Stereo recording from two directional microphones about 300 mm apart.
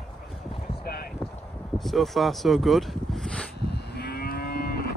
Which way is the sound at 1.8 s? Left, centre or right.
Centre.